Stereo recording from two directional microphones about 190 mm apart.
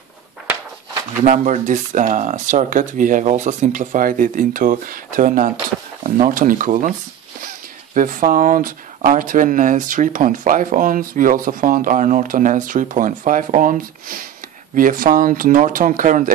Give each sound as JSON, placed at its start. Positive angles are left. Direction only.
{"t": 1.2, "sound": "speech", "side_deg": -40}